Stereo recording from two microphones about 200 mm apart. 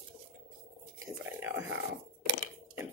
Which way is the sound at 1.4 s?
10° right (ahead or behind).